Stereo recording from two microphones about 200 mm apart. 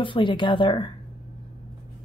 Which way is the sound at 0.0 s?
25° left (ahead or behind).